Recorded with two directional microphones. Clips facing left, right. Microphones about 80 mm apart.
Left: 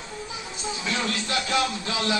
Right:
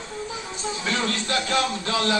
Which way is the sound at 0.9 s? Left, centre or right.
Right.